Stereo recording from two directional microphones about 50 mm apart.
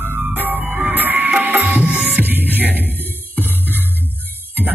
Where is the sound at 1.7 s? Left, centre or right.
Right.